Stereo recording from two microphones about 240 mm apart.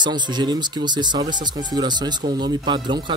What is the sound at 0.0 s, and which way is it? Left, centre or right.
Speech, centre.